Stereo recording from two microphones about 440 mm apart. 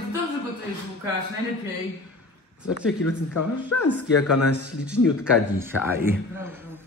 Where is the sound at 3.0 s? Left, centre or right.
Left.